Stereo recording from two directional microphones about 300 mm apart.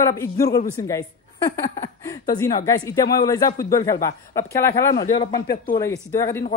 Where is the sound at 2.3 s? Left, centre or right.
Centre.